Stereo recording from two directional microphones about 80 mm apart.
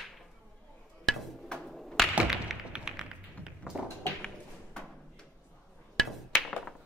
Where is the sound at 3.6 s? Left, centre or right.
Centre.